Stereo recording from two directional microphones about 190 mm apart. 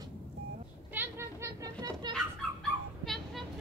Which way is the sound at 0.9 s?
15° right (ahead or behind).